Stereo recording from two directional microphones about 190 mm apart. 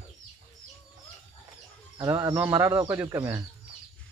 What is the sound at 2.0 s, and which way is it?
Speech, 20° right (ahead or behind).